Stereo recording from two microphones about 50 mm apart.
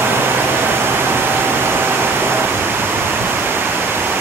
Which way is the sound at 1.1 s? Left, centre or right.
Right.